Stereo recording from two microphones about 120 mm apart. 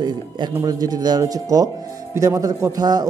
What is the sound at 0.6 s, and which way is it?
A man's voice, 30° right (ahead or behind).